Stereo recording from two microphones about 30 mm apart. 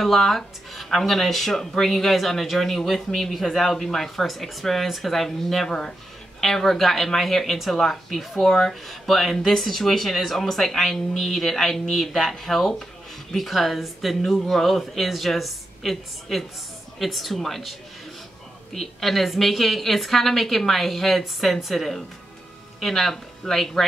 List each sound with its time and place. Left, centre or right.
0.0 s a woman's voice: centre
5.7 s speech: centre
8.1 s a woman's voice: centre
8.5 s speech: left
8.8 s a woman's voice: centre
14.3 s a woman's voice: centre
18.7 s a woman's voice: centre